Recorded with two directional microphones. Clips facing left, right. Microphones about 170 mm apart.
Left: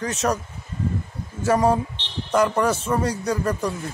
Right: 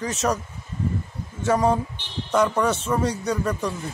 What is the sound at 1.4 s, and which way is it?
Speech, 5° left (ahead or behind).